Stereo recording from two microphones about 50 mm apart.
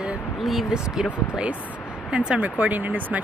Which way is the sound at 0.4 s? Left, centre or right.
Centre.